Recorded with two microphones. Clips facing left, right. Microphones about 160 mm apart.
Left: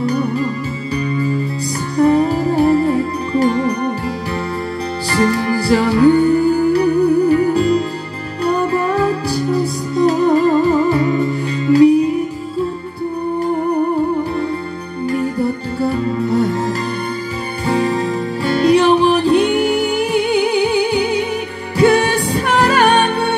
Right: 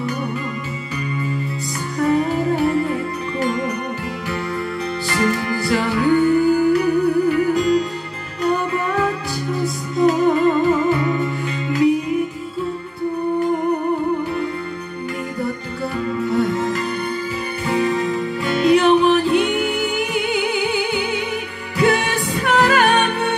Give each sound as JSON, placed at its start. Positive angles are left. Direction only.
{"t": 2.0, "sound": "music", "side_deg": 35}
{"t": 5.1, "sound": "music", "side_deg": 35}
{"t": 15.8, "sound": "music", "side_deg": 35}